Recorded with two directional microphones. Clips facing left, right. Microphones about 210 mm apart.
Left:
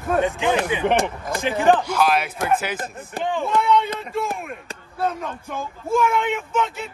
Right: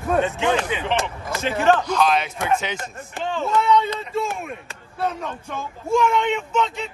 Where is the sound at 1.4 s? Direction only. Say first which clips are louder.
Left 1 dB; 15° left (ahead or behind).